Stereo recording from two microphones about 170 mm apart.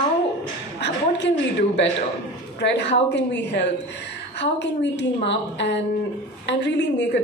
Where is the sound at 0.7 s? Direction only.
90° left.